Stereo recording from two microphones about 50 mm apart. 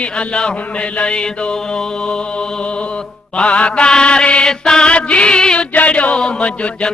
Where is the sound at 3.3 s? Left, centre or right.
Left.